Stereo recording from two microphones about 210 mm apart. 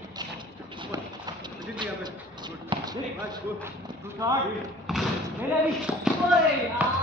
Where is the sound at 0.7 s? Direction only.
20° right (ahead or behind).